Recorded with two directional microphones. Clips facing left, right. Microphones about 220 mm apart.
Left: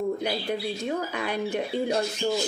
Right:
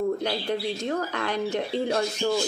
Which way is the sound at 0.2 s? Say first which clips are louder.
Right 1 dB; 10° left (ahead or behind).